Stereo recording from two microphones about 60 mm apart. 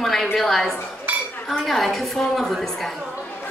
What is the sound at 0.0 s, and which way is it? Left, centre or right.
A woman's voice, centre.